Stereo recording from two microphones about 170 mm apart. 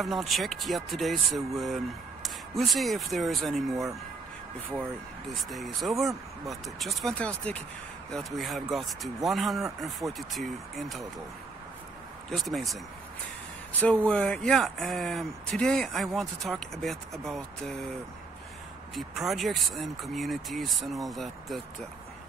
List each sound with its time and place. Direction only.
0.0 s speech: centre (ahead or behind)
5.3 s speech: centre (ahead or behind)
12.3 s speech: centre (ahead or behind)
13.7 s speech: 10° left (ahead or behind)
18.9 s speech: centre (ahead or behind)